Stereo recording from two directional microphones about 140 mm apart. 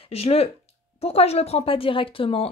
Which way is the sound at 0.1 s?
45° left (ahead or behind).